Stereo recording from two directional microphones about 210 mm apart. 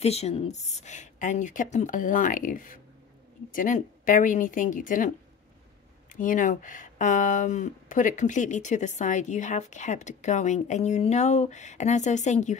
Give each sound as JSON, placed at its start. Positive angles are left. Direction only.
{"t": 0.0, "sound": "speech", "side_deg": 30}
{"t": 6.1, "sound": "speech", "side_deg": 40}